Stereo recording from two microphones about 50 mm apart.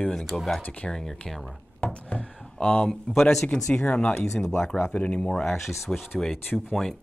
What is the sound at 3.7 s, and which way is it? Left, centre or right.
Speech, left.